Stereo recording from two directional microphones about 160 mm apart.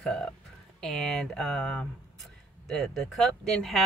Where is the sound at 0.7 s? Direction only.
5° left (ahead or behind).